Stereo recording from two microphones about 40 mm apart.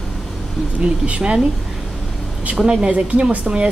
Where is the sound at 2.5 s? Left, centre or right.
Right.